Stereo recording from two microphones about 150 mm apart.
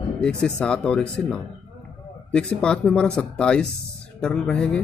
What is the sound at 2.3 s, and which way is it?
Speech, 5° left (ahead or behind).